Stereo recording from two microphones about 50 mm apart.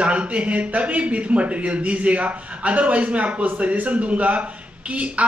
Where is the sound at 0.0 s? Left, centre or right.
Right.